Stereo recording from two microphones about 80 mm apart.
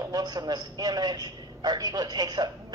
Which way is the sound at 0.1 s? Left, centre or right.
Right.